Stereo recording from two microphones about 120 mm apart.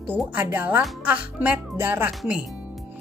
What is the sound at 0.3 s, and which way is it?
Speech, 15° right (ahead or behind).